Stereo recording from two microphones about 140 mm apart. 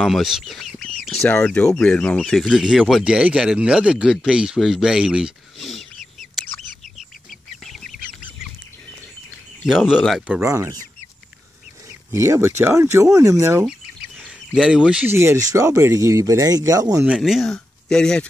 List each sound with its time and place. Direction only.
0.0 s speech: centre (ahead or behind)
7.0 s bird: centre (ahead or behind)
9.7 s speech: 5° right (ahead or behind)
10.4 s speech: 20° right (ahead or behind)
12.1 s speech: 20° right (ahead or behind)
13.7 s chicken: 5° right (ahead or behind)
15.1 s speech: 20° right (ahead or behind)
17.0 s speech: 5° right (ahead or behind)